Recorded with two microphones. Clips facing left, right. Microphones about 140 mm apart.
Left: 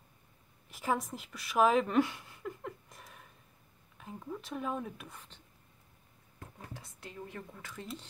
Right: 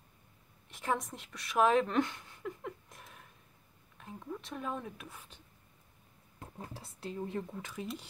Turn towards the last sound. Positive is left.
turn(degrees=-25)  # may be behind; listen again after turning